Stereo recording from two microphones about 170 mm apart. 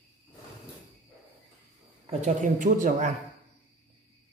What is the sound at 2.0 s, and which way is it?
Speech, 45° right (ahead or behind).